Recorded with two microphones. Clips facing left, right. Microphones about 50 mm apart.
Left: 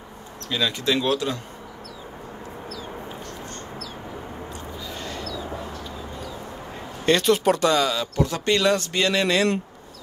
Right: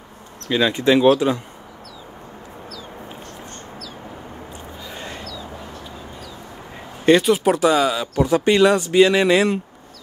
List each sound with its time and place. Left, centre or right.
0.5 s speech: right
4.9 s a sound: right
7.1 s speech: centre